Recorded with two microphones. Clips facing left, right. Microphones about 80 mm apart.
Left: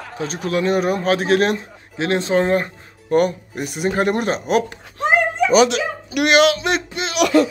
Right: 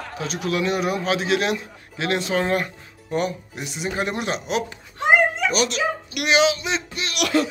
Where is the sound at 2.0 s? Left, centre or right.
Left.